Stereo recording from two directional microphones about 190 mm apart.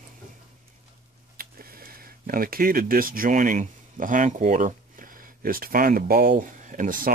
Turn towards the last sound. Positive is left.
turn(degrees=-45)  # may be behind; listen again after turning